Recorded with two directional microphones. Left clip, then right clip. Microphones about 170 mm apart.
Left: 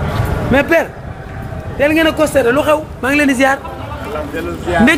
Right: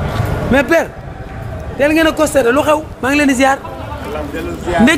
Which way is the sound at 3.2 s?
5° right (ahead or behind).